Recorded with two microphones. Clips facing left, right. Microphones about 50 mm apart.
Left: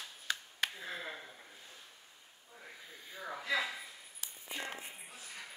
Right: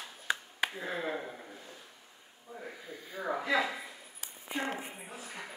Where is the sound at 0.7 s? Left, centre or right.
Right.